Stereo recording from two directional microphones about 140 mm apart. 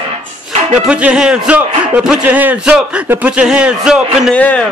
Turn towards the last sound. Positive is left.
turn(degrees=10)  # may be behind; listen again after turning